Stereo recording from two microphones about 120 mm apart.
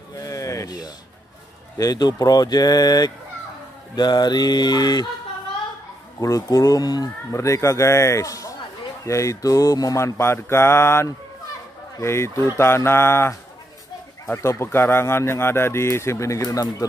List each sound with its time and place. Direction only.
0.1 s a sound: 30° left (ahead or behind)
1.8 s speech: 30° left (ahead or behind)
6.2 s speech: 25° left (ahead or behind)